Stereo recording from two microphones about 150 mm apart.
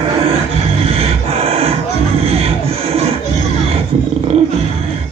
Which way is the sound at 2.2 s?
40° right (ahead or behind).